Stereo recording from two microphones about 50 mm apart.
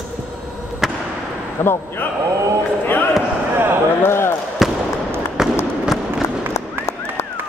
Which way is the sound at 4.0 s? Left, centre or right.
Left.